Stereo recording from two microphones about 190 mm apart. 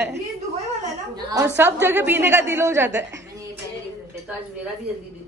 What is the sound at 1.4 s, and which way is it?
A woman's voice, 15° right (ahead or behind).